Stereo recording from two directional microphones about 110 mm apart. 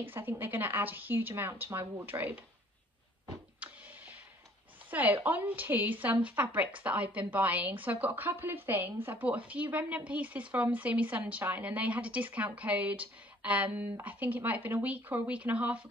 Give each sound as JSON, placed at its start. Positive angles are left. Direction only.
{"t": 0.0, "sound": "a woman's voice", "side_deg": -20}
{"t": 4.9, "sound": "a woman's voice", "side_deg": -15}